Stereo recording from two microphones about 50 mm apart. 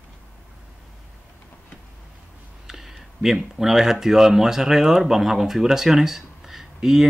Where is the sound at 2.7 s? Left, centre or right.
Centre.